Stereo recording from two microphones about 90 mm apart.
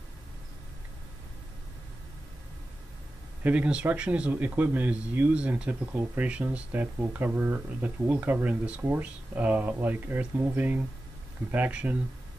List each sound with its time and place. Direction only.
3.4 s speech: 15° right (ahead or behind)